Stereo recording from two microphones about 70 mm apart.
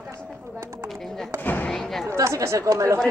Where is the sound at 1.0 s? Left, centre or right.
Centre.